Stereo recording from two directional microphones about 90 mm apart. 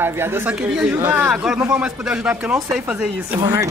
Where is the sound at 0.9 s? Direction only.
25° right (ahead or behind).